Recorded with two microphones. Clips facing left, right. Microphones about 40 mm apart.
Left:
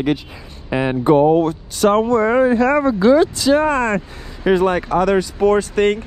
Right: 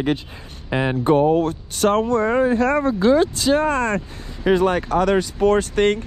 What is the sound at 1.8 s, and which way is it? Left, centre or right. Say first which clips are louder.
Speech: left 3 dB; left.